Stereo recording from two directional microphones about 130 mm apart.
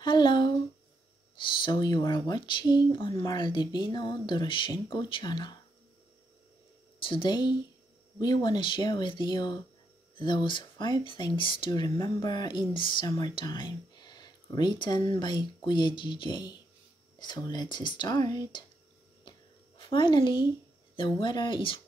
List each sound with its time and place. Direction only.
0.0 s a sound: 35° left (ahead or behind)
1.4 s speech: 40° left (ahead or behind)
7.0 s speech: 40° left (ahead or behind)
19.8 s speech: 40° left (ahead or behind)